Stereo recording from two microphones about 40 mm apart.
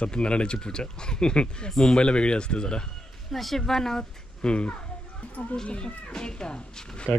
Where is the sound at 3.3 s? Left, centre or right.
Centre.